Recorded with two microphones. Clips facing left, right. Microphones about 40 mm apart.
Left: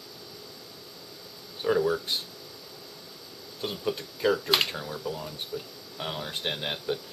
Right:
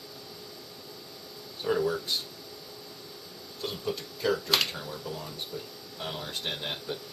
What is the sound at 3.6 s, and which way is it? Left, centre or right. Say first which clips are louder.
Speech: left 2 dB; centre.